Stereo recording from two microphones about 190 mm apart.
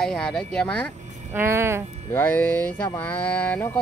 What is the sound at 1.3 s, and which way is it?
Speech, 15° right (ahead or behind).